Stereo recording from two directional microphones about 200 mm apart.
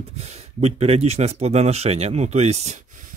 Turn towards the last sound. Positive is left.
turn(degrees=-35)  # may be behind; listen again after turning